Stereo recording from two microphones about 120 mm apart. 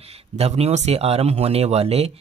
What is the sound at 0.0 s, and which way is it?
Speech, 60° right (ahead or behind).